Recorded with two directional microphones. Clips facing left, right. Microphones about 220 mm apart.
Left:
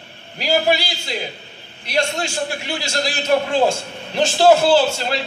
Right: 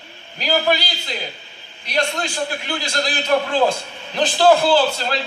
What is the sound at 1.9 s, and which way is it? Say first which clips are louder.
A man's voice: left 1 dB; 25° left (ahead or behind).